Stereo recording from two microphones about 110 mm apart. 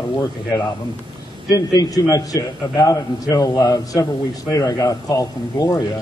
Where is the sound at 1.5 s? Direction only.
30° left (ahead or behind).